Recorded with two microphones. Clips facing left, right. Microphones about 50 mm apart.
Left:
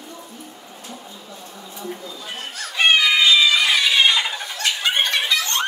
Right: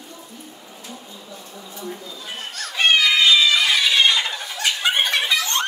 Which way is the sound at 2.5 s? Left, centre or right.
Centre.